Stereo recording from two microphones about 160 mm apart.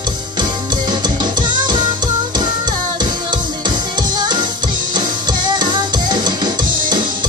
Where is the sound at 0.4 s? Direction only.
25° right (ahead or behind).